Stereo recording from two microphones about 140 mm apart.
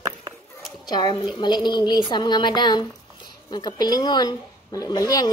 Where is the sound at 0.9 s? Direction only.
30° left (ahead or behind).